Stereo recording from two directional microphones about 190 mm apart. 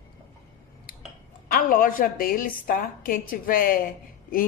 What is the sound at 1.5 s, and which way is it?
Speech, 45° left (ahead or behind).